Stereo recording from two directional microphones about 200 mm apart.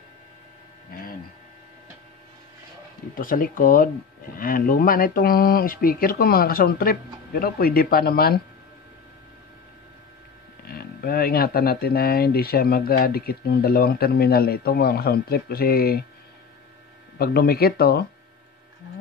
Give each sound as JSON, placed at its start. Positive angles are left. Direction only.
{"t": 0.9, "sound": "a sound", "side_deg": 45}
{"t": 3.2, "sound": "speech", "side_deg": 45}
{"t": 10.7, "sound": "speech", "side_deg": 50}
{"t": 17.2, "sound": "speech", "side_deg": 50}